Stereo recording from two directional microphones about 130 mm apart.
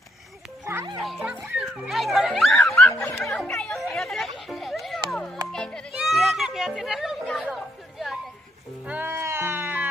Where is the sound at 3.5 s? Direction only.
Centre (ahead or behind).